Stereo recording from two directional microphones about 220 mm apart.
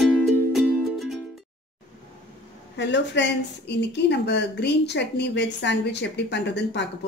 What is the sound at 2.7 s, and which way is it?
Speech, 55° left (ahead or behind).